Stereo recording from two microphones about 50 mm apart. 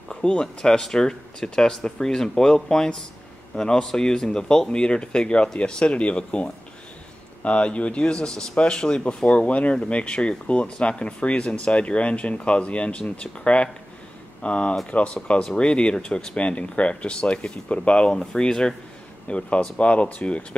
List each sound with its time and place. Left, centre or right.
0.1 s speech: centre
16.3 s speech: left